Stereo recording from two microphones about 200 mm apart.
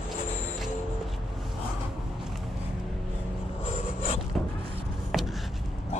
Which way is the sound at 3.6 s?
30° left (ahead or behind).